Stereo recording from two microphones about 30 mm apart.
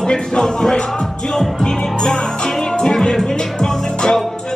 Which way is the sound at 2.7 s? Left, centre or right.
Left.